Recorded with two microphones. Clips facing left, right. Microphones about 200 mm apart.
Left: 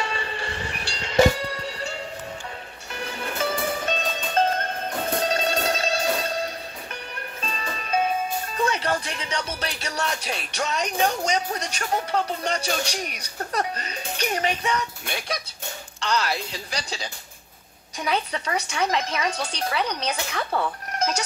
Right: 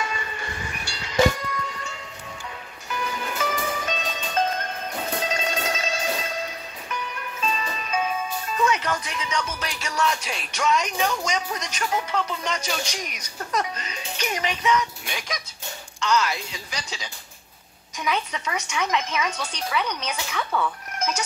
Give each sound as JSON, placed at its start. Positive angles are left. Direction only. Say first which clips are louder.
{"t": 0.0, "sound": "train", "louder": "left 2 dB", "side_deg": 30}
{"t": 2.9, "sound": "music", "louder": "right 2 dB", "side_deg": 30}
{"t": 7.3, "sound": "music", "louder": "right 5 dB", "side_deg": 45}
{"t": 8.5, "sound": "speech", "louder": "right 1 dB", "side_deg": 35}